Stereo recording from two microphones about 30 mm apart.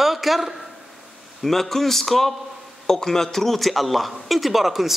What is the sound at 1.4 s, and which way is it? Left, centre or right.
A man's voice, centre.